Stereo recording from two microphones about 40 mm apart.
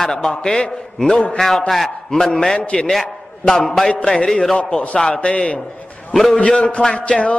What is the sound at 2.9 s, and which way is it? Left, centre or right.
A man's voice, centre.